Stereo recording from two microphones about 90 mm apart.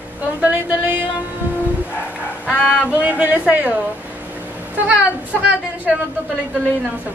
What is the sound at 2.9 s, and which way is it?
Speech, 15° right (ahead or behind).